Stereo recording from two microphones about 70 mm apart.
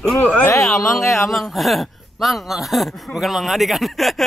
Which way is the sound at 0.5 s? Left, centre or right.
Left.